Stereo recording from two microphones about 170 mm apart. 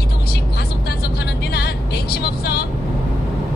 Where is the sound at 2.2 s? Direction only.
70° left (ahead or behind).